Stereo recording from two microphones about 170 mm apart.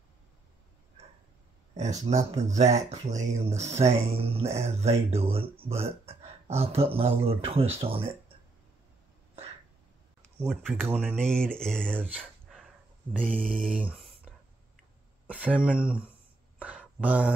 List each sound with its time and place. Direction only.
2.0 s speech: 40° right (ahead or behind)
10.4 s speech: centre (ahead or behind)
11.9 s speech: 10° right (ahead or behind)
13.4 s speech: 5° left (ahead or behind)
13.7 s a sound: 10° right (ahead or behind)
15.2 s speech: 10° right (ahead or behind)
16.5 s a sound: 10° right (ahead or behind)